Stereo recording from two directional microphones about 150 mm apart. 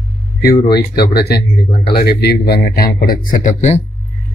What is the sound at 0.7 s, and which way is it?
A man's voice, 90° left.